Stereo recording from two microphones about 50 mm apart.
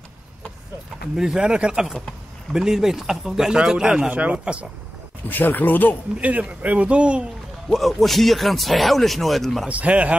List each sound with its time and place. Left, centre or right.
1.1 s speech: centre
1.4 s speech: right
4.1 s speech: right
5.3 s speech: left
6.1 s speech: right
7.7 s speech: centre
9.7 s speech: right